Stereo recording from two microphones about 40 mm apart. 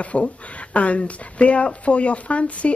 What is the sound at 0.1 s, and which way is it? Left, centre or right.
Speech, left.